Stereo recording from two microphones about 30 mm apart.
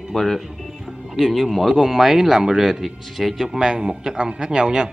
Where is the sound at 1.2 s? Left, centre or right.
Centre.